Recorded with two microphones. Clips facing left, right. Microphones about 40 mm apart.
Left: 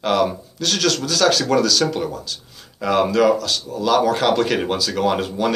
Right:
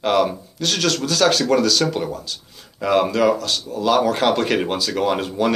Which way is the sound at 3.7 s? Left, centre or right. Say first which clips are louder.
Even; right.